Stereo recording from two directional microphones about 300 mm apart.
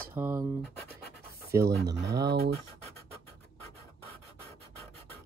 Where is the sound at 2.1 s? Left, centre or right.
Right.